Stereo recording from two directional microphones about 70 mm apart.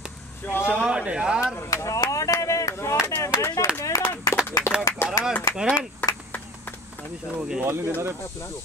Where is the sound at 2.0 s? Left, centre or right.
Left.